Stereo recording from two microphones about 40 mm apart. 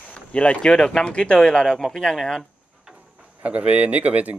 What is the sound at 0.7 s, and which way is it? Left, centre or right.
Speech, centre.